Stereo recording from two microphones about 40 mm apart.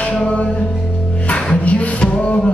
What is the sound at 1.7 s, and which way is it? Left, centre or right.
Music, left.